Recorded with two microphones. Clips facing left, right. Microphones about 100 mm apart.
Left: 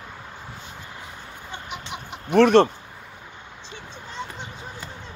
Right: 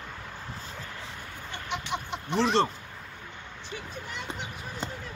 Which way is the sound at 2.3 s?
60° left (ahead or behind).